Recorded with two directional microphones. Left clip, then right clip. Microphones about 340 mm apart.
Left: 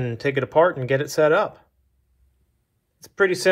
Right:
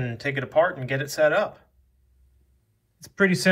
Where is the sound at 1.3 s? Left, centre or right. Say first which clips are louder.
Left 4 dB; centre.